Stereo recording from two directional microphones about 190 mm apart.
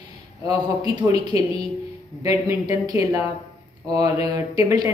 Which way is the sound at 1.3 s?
30° left (ahead or behind).